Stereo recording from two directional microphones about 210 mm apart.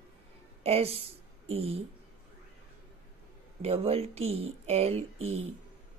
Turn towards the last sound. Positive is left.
turn(degrees=-30)  # may be behind; listen again after turning